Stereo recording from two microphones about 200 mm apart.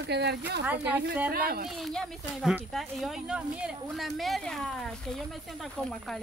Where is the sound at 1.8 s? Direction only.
Centre (ahead or behind).